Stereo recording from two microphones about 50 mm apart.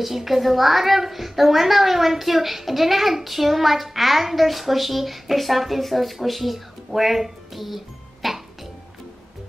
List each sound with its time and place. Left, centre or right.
0.0 s a child's voice: centre